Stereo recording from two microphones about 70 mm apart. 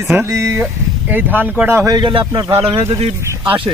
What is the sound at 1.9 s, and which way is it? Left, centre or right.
Speech, right.